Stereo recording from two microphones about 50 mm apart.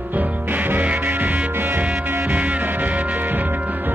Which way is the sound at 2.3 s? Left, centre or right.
Right.